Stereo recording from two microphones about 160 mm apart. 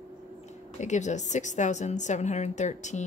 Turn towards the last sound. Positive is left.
turn(degrees=45)  # may be behind; listen again after turning